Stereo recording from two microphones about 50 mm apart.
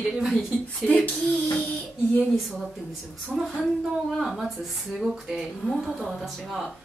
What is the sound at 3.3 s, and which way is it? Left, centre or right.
A woman's voice, centre.